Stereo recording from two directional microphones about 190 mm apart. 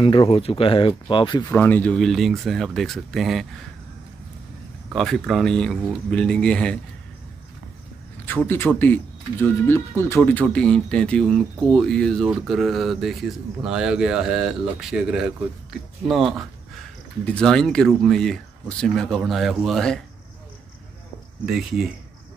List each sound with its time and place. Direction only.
0.0 s speech: 25° left (ahead or behind)
1.5 s speech: 10° left (ahead or behind)
4.9 s speech: centre (ahead or behind)
8.3 s speech: 10° left (ahead or behind)
21.5 s speech: centre (ahead or behind)